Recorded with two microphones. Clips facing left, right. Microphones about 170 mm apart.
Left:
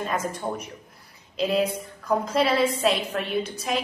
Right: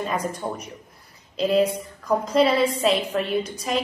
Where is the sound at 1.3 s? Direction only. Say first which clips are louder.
Right 3 dB; 5° left (ahead or behind).